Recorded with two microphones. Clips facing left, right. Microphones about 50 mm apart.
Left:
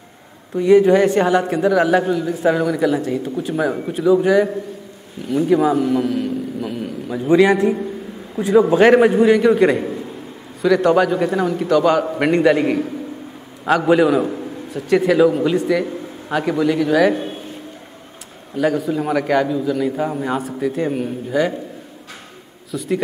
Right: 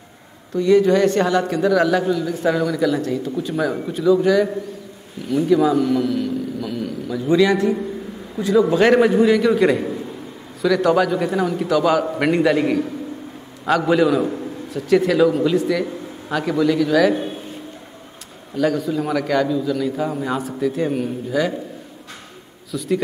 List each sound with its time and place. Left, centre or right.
0.6 s a man's voice: centre
3.5 s a man's voice: centre
5.5 s a man's voice: left
18.6 s a man's voice: centre
22.7 s a man's voice: centre